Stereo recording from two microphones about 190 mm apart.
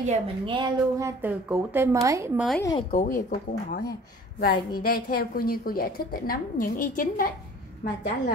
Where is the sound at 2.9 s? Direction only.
45° left (ahead or behind).